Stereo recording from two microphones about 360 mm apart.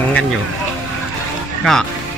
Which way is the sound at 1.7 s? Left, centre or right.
Centre.